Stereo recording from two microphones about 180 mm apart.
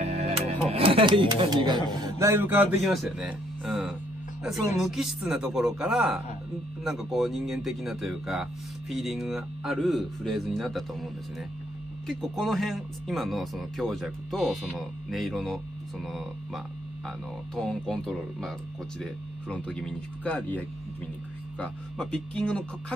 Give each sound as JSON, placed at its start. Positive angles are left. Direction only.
{"t": 0.0, "sound": "music", "side_deg": -35}
{"t": 0.7, "sound": "a man's voice", "side_deg": -30}
{"t": 12.1, "sound": "speech", "side_deg": 0}
{"t": 17.6, "sound": "speech", "side_deg": 5}
{"t": 19.5, "sound": "speech", "side_deg": 5}